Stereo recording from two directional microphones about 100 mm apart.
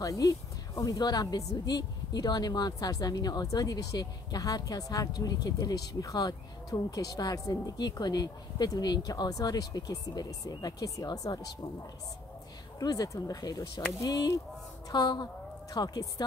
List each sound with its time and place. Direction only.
0.0 s speech: 35° left (ahead or behind)
12.7 s speech: 40° left (ahead or behind)